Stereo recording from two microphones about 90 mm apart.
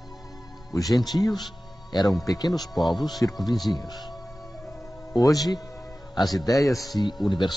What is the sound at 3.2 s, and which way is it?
Speech, 30° left (ahead or behind).